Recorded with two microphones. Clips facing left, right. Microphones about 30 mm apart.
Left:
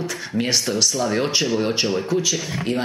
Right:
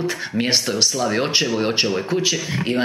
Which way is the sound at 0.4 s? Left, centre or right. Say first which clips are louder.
Right 1 dB; centre.